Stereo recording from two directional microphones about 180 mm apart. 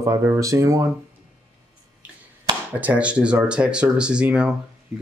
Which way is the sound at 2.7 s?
10° right (ahead or behind).